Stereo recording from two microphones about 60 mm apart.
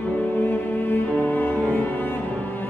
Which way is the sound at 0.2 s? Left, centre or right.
Left.